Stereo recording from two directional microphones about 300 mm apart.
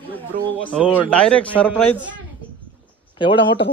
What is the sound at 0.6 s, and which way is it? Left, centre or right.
A man's voice, centre.